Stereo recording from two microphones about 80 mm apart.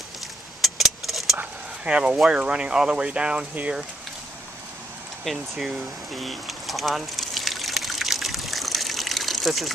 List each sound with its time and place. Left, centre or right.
0.6 s vehicle: centre
1.9 s speech: centre
5.2 s a sound: centre